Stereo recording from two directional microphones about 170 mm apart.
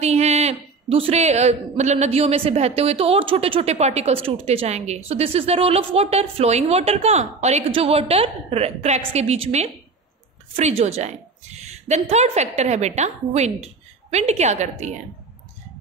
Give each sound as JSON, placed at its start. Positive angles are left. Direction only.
{"t": 0.0, "sound": "a woman's voice", "side_deg": -40}